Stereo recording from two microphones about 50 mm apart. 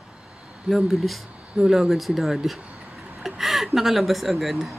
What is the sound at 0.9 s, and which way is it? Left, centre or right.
A woman's voice, centre.